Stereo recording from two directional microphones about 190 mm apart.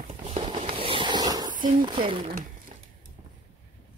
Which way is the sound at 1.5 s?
45° right (ahead or behind).